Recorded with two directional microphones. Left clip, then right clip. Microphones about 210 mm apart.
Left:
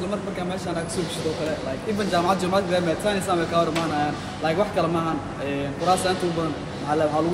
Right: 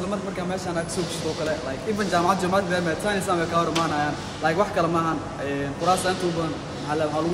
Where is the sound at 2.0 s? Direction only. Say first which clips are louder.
Even; centre (ahead or behind).